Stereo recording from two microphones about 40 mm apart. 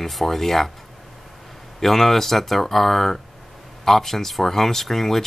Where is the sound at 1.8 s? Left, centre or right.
Centre.